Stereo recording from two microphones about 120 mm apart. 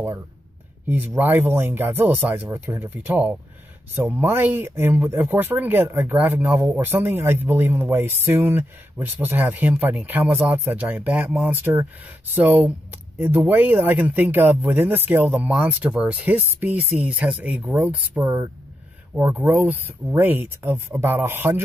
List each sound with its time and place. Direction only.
0.8 s speech: 15° right (ahead or behind)